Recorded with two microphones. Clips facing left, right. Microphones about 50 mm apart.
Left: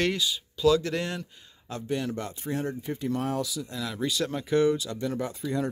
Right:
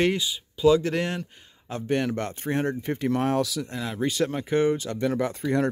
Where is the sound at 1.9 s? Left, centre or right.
Right.